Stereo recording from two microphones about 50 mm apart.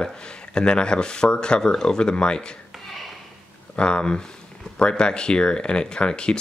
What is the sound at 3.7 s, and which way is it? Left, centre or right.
Speech, centre.